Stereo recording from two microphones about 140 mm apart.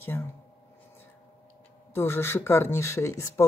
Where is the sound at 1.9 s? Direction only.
15° left (ahead or behind).